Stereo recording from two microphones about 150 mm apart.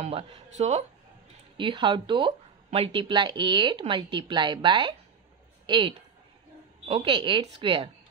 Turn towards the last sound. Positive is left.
turn(degrees=-35)  # may be behind; listen again after turning